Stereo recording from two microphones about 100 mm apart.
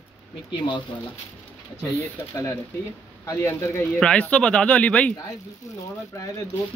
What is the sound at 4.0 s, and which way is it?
Speech, 10° left (ahead or behind).